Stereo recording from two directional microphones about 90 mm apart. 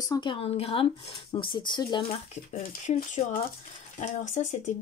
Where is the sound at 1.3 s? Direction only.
65° left (ahead or behind).